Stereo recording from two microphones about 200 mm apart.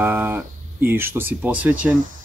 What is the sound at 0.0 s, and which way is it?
Speech, 10° right (ahead or behind).